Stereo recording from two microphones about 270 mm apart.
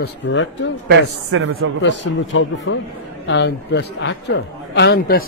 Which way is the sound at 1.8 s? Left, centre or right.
Left.